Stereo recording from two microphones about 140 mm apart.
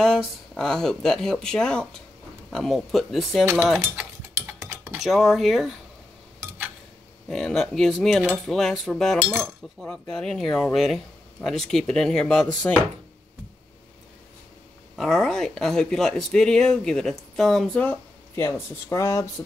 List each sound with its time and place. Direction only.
0.0 s speech: 5° left (ahead or behind)
3.8 s a sound: 15° right (ahead or behind)
4.9 s speech: centre (ahead or behind)
7.2 s speech: centre (ahead or behind)
15.0 s speech: centre (ahead or behind); by 19.4 s 20° left (ahead or behind)